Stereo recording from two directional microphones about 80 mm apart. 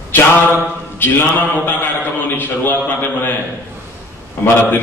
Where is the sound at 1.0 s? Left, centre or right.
Left.